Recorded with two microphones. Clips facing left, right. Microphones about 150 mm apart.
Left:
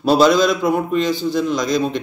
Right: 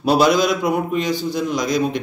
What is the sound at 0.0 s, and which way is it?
Speech, 15° right (ahead or behind).